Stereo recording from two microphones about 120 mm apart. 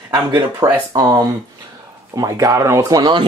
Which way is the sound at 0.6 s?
35° right (ahead or behind).